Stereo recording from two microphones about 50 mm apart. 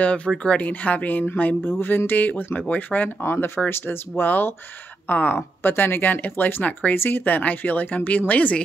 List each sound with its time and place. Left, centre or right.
0.0 s speech: left
3.3 s speech: left
7.0 s speech: left